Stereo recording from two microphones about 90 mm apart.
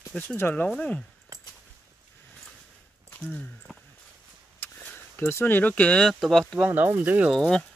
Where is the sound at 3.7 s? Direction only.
Centre (ahead or behind).